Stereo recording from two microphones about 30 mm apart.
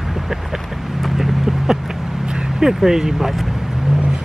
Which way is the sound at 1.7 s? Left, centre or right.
Centre.